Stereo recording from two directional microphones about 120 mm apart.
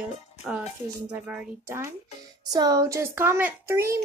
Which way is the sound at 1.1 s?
10° right (ahead or behind).